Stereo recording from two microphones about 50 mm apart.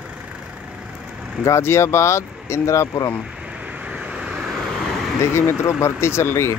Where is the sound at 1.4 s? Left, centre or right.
Left.